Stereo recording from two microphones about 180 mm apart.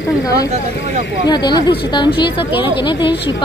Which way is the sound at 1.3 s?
25° left (ahead or behind).